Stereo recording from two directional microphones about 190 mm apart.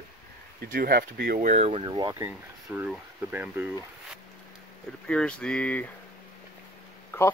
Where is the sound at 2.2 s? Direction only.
10° right (ahead or behind).